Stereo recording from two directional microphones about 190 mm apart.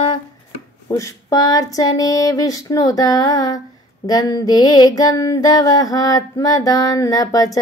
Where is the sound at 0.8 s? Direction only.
15° left (ahead or behind).